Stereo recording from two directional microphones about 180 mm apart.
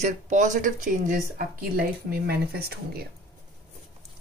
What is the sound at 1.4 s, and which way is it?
Speech, 55° right (ahead or behind).